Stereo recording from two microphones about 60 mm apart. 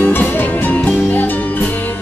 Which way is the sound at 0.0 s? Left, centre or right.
Left.